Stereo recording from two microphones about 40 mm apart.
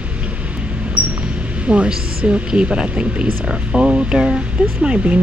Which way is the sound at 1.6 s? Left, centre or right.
Right.